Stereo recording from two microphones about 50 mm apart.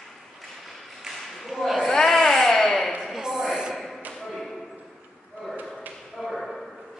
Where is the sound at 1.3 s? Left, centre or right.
Centre.